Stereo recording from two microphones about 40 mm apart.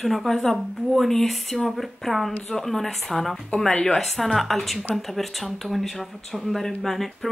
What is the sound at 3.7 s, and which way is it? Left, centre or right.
Speech, centre.